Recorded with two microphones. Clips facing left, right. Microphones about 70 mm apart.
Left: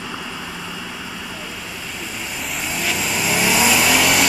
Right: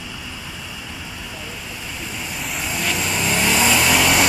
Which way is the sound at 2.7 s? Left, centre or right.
Centre.